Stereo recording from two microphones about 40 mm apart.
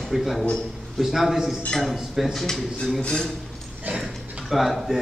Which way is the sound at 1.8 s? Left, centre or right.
Centre.